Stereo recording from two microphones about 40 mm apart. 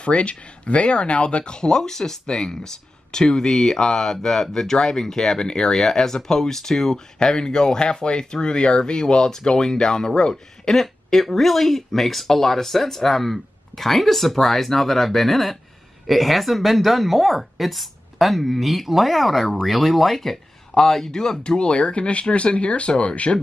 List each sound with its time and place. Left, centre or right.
0.0 s speech: left; by 7.0 s centre
7.2 s speech: centre